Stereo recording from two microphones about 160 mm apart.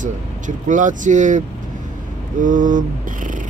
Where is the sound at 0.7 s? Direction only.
50° right (ahead or behind).